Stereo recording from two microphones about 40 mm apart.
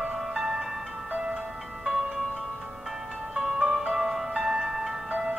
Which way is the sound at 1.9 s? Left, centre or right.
Centre.